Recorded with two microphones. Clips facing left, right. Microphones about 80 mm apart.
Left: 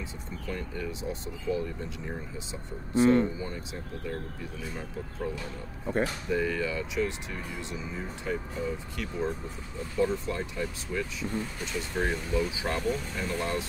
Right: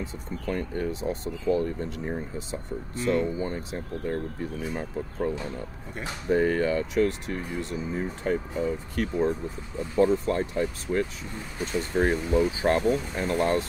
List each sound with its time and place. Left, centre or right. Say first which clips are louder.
0.0 s speech: right 5 dB; right
3.0 s speech: left 4 dB; left
3.3 s speech: right 6 dB; right